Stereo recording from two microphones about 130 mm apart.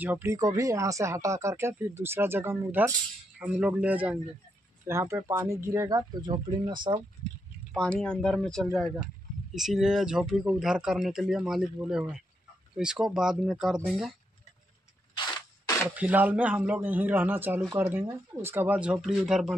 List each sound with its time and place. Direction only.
0.0 s speech: 15° right (ahead or behind)
4.8 s speech: 20° right (ahead or behind)
7.7 s speech: 5° left (ahead or behind)
15.1 s a sound: 35° left (ahead or behind)
16.0 s speech: 10° right (ahead or behind)